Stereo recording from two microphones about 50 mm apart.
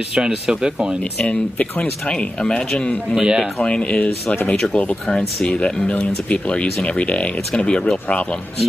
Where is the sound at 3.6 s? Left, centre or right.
Left.